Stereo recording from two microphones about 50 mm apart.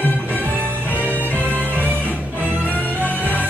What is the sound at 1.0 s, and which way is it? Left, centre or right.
Music, left.